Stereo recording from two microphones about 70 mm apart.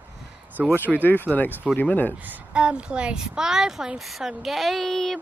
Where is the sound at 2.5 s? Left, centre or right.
Centre.